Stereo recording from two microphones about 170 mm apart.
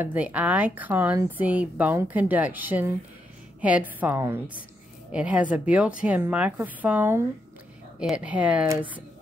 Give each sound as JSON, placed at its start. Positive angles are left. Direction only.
{"t": 0.0, "sound": "speech", "side_deg": -10}